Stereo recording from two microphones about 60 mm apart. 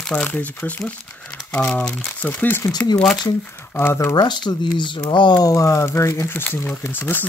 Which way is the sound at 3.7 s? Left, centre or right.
Left.